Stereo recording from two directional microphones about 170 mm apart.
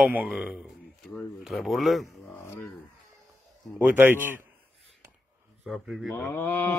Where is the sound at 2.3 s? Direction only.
15° left (ahead or behind).